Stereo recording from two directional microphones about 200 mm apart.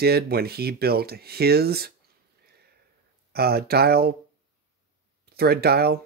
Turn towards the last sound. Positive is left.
turn(degrees=-50)  # may be behind; listen again after turning